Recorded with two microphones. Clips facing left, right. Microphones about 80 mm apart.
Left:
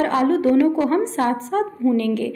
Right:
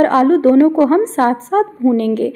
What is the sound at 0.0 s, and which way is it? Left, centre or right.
A woman's voice, right.